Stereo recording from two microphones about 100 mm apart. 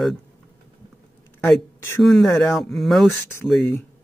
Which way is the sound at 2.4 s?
Centre (ahead or behind).